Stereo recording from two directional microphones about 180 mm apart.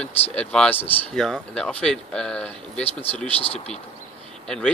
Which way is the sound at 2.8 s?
35° left (ahead or behind).